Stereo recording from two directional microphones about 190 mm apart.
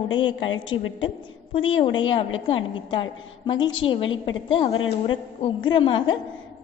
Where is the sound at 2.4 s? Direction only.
25° left (ahead or behind).